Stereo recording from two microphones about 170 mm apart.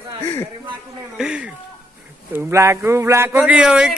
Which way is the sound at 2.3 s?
15° right (ahead or behind).